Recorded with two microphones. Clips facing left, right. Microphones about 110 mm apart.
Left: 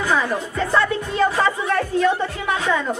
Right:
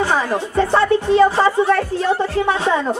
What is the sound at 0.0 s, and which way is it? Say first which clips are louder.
Speech: right 3 dB; 30° right (ahead or behind).